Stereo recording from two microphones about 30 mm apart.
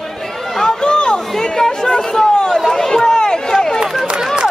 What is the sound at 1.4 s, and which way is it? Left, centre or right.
Chatter, centre.